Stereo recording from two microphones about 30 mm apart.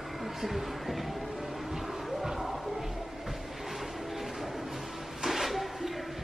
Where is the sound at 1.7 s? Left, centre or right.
Centre.